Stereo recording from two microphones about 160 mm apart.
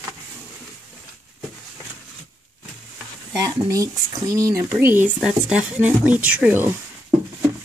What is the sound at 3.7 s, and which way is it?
Speech, 20° right (ahead or behind).